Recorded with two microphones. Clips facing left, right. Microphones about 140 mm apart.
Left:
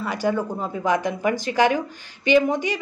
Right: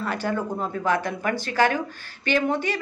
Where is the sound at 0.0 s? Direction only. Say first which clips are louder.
Left 3 dB; 10° left (ahead or behind).